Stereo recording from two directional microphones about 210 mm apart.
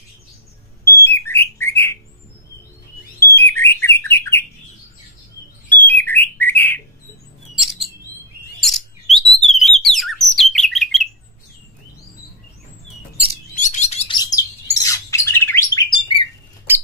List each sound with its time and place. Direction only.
1.0 s bird: 10° left (ahead or behind)
3.2 s bird: 10° left (ahead or behind)
5.7 s bird: 10° left (ahead or behind)
7.5 s chirp: centre (ahead or behind)
8.5 s bird: centre (ahead or behind)
13.6 s bird: 35° left (ahead or behind); by 15.8 s 10° left (ahead or behind)
15.9 s bird: 20° left (ahead or behind)